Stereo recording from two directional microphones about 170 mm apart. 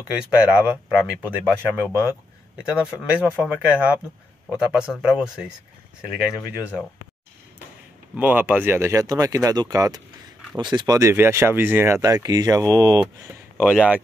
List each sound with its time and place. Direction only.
0.1 s speech: 5° right (ahead or behind)
8.2 s speech: 10° right (ahead or behind)
13.6 s speech: 5° right (ahead or behind)